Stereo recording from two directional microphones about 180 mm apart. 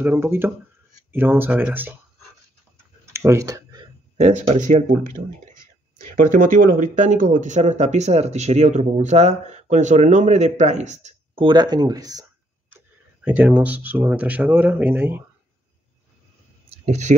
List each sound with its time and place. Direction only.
0.0 s speech: 15° right (ahead or behind)
3.1 s tick-tock: 15° right (ahead or behind)
4.5 s speech: 40° right (ahead or behind)
6.3 s speech: 50° right (ahead or behind)
11.4 s speech: 25° right (ahead or behind)
13.2 s speech: 10° right (ahead or behind)
16.8 s speech: 40° right (ahead or behind)